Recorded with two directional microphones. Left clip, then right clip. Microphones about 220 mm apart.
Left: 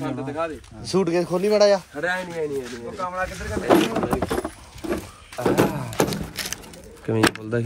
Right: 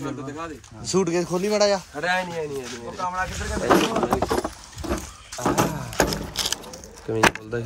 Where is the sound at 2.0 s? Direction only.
35° right (ahead or behind).